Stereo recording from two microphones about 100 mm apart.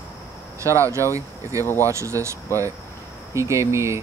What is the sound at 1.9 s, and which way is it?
Speech, 30° right (ahead or behind).